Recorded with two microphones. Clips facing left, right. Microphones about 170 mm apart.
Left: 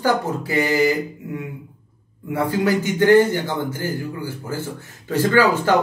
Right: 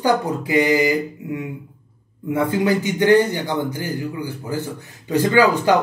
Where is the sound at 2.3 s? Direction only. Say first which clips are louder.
Right 1 dB; 20° right (ahead or behind).